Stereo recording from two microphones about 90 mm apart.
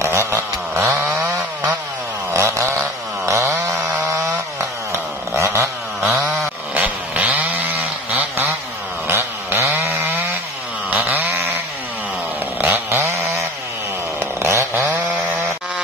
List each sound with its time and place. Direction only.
0.0 s chainsaw: 30° right (ahead or behind)
1.0 s chainsaw: 20° right (ahead or behind)
2.3 s chainsaw: 35° right (ahead or behind)
6.0 s chainsaw: 15° right (ahead or behind)
9.0 s chainsaw: 25° right (ahead or behind)
11.0 s a sound: 25° right (ahead or behind)
12.5 s chainsaw: 25° right (ahead or behind)
14.9 s chainsaw: 15° right (ahead or behind)